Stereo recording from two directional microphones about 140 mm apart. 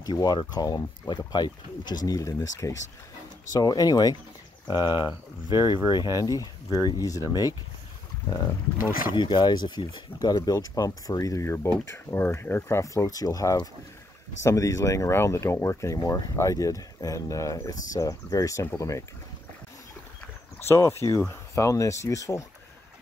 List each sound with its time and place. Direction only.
0.0 s speech: 30° left (ahead or behind)
9.1 s speech: 35° left (ahead or behind)
20.6 s speech: 20° left (ahead or behind)